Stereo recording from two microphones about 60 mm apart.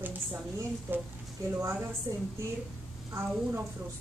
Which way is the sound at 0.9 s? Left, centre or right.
Right.